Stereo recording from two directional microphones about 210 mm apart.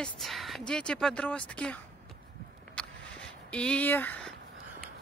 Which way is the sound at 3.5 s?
5° left (ahead or behind).